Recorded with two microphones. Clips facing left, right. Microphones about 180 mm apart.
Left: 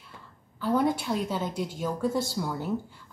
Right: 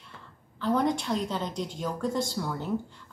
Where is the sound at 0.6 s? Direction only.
5° left (ahead or behind).